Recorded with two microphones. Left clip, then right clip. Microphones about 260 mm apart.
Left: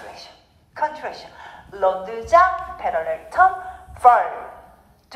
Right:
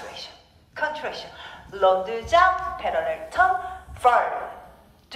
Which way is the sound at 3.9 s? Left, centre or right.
Centre.